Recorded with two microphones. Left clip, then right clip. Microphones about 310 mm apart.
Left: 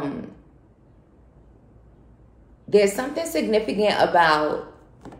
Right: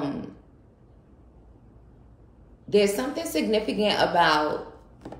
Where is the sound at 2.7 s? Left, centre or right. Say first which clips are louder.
Left 3 dB; centre.